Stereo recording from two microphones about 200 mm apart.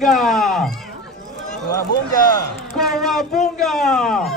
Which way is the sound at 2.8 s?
Centre (ahead or behind).